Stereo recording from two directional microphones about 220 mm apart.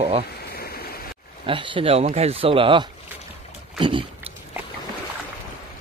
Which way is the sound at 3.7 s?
20° right (ahead or behind).